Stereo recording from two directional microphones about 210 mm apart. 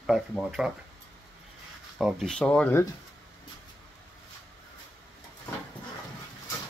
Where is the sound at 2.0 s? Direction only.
Centre (ahead or behind).